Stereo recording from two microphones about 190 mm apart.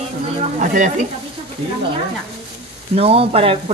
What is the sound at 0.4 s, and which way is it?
Speech, 40° right (ahead or behind).